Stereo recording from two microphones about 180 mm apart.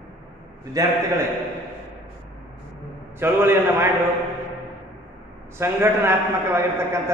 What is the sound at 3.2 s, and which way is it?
Speech, 15° right (ahead or behind).